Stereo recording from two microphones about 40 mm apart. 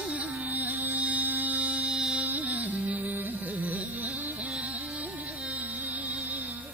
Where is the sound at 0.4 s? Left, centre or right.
Right.